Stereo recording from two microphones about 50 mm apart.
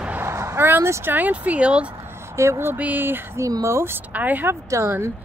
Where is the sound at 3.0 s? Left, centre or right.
Right.